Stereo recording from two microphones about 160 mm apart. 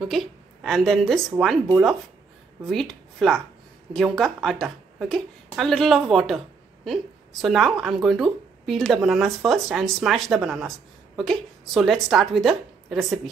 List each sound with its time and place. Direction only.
0.0 s a woman's voice: centre (ahead or behind)
2.6 s a woman's voice: centre (ahead or behind)